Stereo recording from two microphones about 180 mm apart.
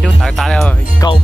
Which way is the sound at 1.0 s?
20° left (ahead or behind).